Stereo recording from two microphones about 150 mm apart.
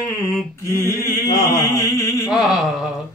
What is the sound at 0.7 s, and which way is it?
Mantra, 20° left (ahead or behind).